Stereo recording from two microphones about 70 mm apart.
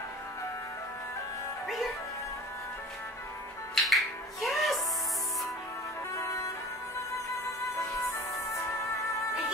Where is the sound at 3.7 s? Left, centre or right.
Centre.